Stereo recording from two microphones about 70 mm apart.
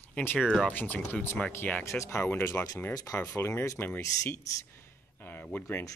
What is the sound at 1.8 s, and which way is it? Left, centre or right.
Speech, left.